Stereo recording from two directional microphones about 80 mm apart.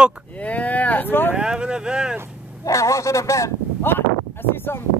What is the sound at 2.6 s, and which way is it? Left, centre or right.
Speech, left.